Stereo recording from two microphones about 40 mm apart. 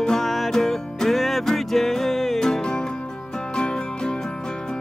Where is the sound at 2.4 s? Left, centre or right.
Centre.